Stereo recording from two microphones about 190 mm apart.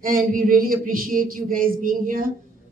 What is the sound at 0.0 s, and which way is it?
Speech, 50° right (ahead or behind).